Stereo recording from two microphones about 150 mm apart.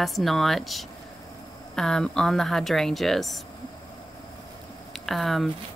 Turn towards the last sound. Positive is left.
turn(degrees=0)  # may be behind; listen again after turning